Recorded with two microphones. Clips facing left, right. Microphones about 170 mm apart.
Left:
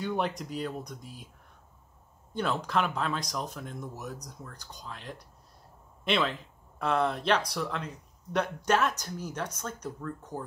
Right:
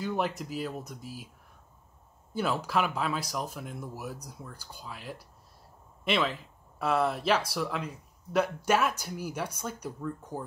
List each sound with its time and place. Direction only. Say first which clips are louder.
0.0 s speech: even; 5° right (ahead or behind)
2.3 s speech: even; 5° right (ahead or behind)